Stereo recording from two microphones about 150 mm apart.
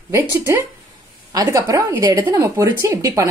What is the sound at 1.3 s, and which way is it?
Speech, 25° right (ahead or behind).